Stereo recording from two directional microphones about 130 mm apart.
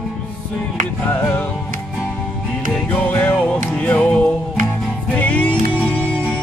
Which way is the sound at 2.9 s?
15° left (ahead or behind).